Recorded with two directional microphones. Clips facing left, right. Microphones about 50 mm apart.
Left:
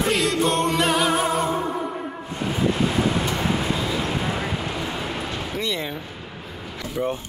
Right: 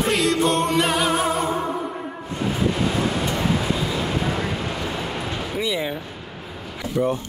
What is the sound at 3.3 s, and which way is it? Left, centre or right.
Vehicle, centre.